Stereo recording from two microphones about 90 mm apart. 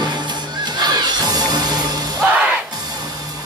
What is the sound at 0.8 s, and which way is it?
Music, 50° right (ahead or behind).